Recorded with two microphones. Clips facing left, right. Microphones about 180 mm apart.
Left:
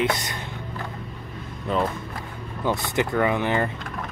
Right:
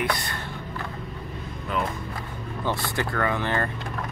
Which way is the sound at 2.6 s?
20° left (ahead or behind).